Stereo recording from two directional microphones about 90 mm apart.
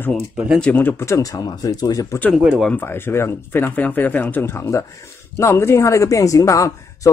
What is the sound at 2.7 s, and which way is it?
Speech, 25° left (ahead or behind).